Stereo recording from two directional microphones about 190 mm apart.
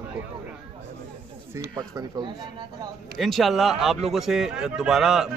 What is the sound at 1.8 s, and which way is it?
Speech, 20° right (ahead or behind).